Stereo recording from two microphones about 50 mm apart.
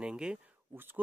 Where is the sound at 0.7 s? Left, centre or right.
Right.